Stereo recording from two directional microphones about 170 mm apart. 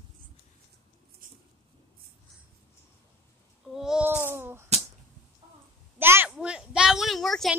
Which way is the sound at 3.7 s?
5° right (ahead or behind).